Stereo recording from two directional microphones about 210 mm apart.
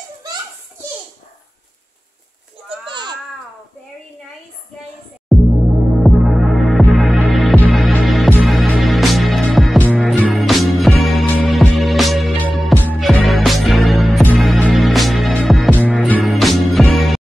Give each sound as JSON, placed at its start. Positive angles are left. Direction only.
{"t": 2.9, "sound": "babbling", "side_deg": -20}
{"t": 5.9, "sound": "music", "side_deg": 0}